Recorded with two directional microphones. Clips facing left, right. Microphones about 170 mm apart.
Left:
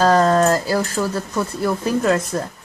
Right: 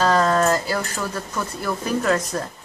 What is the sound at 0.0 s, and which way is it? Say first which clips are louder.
A woman's voice: left 4 dB; 35° left (ahead or behind).